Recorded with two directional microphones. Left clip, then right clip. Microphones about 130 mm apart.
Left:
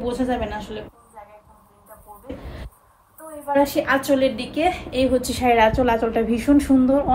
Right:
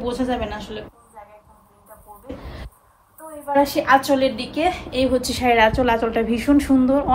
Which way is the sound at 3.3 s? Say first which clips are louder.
Right 1 dB; 25° right (ahead or behind).